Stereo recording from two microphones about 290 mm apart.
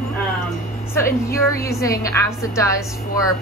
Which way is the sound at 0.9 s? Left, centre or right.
Centre.